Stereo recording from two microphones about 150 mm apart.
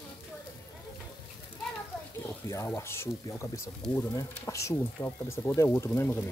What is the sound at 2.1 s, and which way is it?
Speech, 20° left (ahead or behind).